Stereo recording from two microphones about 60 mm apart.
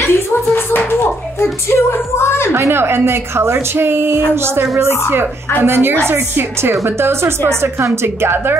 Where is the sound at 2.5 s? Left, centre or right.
Right.